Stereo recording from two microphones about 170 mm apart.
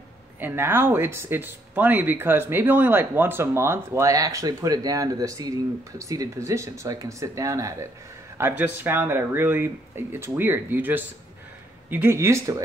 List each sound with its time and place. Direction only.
0.4 s speech: 15° right (ahead or behind)